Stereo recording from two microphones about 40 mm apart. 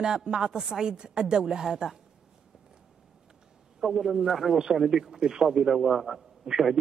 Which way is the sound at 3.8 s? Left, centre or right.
Centre.